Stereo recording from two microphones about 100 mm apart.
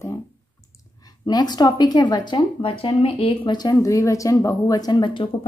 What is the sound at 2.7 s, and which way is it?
Speech, 70° left (ahead or behind).